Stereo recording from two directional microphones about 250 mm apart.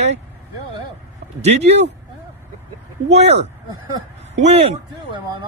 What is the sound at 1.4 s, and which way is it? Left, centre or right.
Speech, right.